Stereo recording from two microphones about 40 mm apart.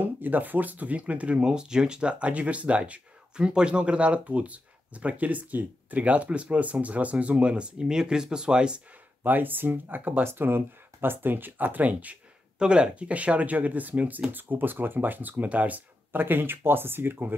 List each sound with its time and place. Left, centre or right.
0.0 s speech: right
1.4 s speech: centre; by 3.0 s right
3.3 s speech: right
9.2 s speech: right
10.2 s speech: right
12.5 s speech: right
15.4 s speech: right
16.1 s speech: right